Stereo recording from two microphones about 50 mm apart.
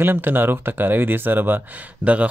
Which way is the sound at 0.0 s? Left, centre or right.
Right.